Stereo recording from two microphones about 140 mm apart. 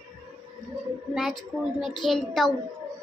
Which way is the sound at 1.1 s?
Centre (ahead or behind).